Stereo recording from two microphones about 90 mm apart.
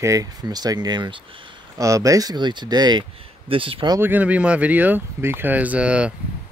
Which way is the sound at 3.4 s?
85° right.